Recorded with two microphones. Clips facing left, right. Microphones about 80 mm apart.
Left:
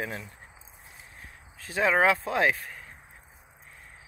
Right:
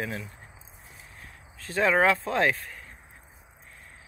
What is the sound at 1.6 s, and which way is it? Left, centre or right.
Speech, centre.